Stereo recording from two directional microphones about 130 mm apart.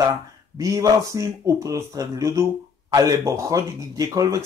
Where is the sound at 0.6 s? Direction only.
25° right (ahead or behind).